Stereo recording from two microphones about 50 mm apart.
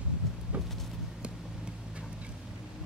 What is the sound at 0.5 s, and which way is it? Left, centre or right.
Vehicle, right.